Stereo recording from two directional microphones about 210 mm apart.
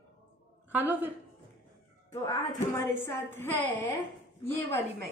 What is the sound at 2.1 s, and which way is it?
A woman's voice, 15° left (ahead or behind).